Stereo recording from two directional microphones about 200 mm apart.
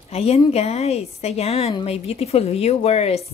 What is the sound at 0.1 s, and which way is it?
A woman's voice, 30° left (ahead or behind).